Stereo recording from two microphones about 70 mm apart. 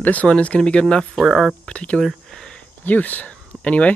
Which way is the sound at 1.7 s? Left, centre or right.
Centre.